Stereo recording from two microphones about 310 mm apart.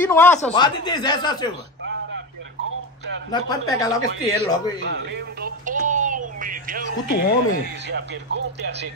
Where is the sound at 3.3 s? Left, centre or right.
Centre.